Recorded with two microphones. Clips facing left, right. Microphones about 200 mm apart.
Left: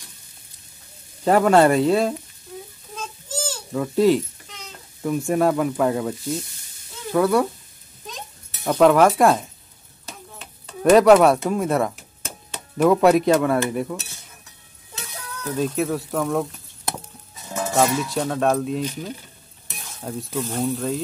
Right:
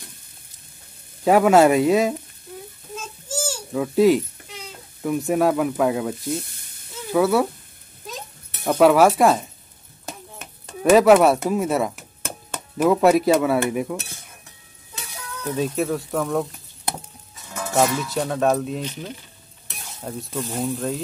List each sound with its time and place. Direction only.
1.2 s speech: 10° right (ahead or behind)
3.3 s goat: 10° right (ahead or behind)
4.6 s speech: 5° right (ahead or behind)
6.3 s sizzle: 55° right (ahead or behind)
7.1 s speech: 5° right (ahead or behind)
8.6 s speech: 5° right (ahead or behind)
10.0 s a sound: 45° right (ahead or behind)
10.8 s speech: centre (ahead or behind)
13.9 s cutlery: 55° right (ahead or behind)
15.5 s speech: centre (ahead or behind)
17.7 s speech: centre (ahead or behind)
20.0 s speech: centre (ahead or behind)